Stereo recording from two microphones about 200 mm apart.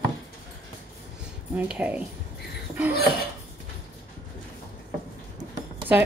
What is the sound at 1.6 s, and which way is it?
Speech, 5° right (ahead or behind).